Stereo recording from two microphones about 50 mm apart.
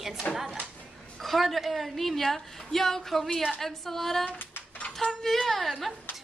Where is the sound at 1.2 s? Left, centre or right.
Centre.